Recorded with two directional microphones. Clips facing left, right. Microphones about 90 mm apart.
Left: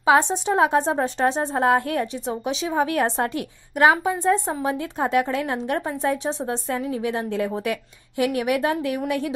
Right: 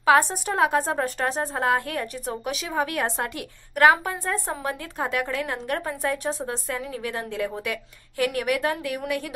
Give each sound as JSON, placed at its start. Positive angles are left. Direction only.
{"t": 0.0, "sound": "a woman's voice", "side_deg": 25}
{"t": 3.7, "sound": "a woman's voice", "side_deg": 20}